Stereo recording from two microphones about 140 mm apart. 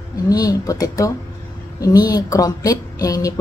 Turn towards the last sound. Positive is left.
turn(degrees=25)  # may be behind; listen again after turning